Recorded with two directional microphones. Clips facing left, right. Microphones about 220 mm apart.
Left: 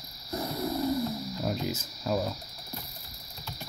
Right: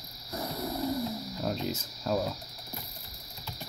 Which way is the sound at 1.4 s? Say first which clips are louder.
Even; 5° left (ahead or behind).